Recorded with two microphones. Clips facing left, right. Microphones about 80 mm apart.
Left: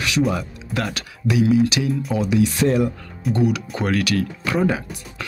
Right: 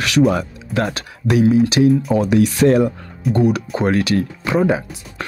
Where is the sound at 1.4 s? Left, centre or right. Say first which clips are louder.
Right 5 dB; right.